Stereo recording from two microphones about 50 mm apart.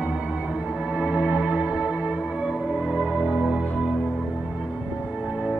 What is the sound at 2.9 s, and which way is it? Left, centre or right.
Music, right.